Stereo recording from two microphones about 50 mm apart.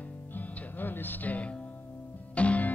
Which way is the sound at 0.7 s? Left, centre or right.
Left.